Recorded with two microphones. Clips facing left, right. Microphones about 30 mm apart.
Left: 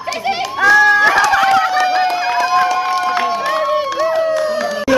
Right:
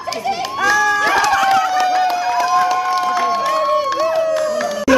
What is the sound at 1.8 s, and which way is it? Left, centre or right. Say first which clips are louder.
Music: left 1 dB; left.